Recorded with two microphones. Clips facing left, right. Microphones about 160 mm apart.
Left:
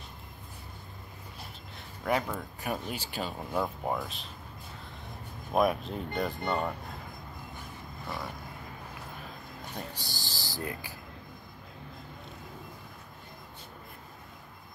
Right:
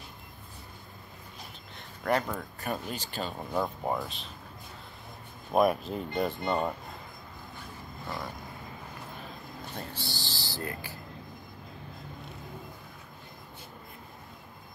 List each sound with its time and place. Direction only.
2.0 s speech: 5° left (ahead or behind)
5.5 s speech: centre (ahead or behind)
9.9 s a sound: 40° left (ahead or behind)
10.6 s speech: 15° left (ahead or behind)